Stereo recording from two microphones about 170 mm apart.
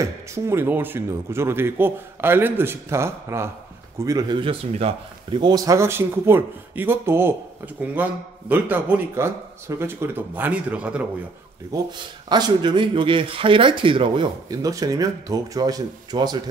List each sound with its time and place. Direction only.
0.0 s speech: 15° right (ahead or behind)
11.7 s speech: 20° right (ahead or behind)